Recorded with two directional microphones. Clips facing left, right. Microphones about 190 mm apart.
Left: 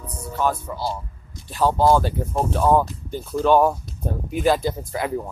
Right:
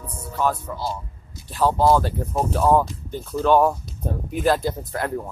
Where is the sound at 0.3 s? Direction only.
5° left (ahead or behind).